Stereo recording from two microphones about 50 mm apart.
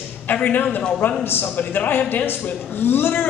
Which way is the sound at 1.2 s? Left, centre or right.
Left.